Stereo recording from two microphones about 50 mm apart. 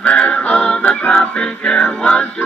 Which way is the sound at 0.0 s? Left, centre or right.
Left.